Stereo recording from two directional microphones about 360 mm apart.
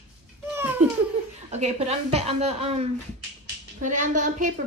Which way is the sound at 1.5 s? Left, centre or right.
Centre.